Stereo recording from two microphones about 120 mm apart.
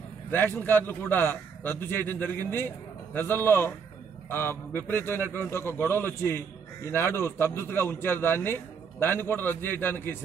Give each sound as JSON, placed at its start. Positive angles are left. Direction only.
{"t": 0.3, "sound": "a man's voice", "side_deg": 15}